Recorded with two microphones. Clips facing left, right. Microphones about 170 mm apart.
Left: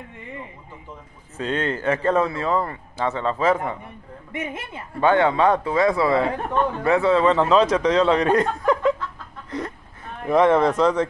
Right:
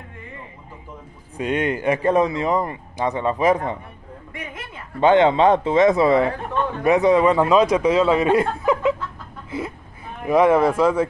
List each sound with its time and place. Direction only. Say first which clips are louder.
1.3 s speech: right 3 dB; 15° right (ahead or behind)
4.3 s speech: left 5 dB; 25° left (ahead or behind)
5.0 s speech: right 3 dB; 20° right (ahead or behind)
9.5 s a sound: right 1 dB; 5° right (ahead or behind)